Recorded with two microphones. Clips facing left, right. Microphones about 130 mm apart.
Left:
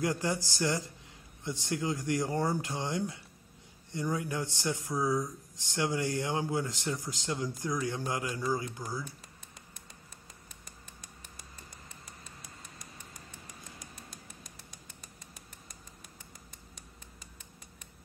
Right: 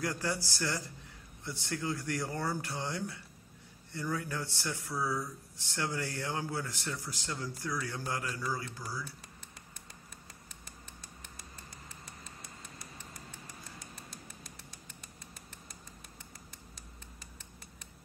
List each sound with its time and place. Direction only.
0.0 s speech: 20° left (ahead or behind)